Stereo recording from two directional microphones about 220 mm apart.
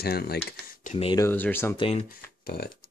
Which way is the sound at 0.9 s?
25° left (ahead or behind).